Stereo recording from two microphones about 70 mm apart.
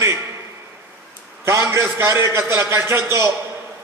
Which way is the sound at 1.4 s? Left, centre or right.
Right.